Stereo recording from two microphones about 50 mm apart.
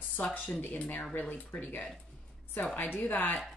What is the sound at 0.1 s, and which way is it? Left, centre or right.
Speech, left.